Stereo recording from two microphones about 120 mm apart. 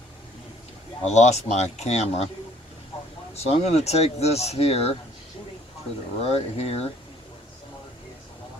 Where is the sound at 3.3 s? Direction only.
60° left (ahead or behind).